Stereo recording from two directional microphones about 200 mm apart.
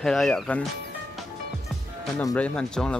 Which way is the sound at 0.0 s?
5° left (ahead or behind).